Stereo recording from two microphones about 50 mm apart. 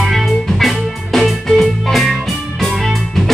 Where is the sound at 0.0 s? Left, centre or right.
Centre.